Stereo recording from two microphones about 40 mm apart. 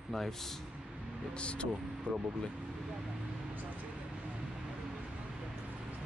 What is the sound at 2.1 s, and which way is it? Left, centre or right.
Speech, right.